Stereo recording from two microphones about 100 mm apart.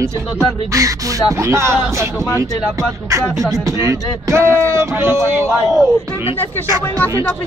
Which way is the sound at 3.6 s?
30° right (ahead or behind).